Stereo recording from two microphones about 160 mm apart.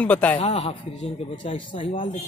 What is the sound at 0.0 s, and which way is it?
Speech, 10° left (ahead or behind).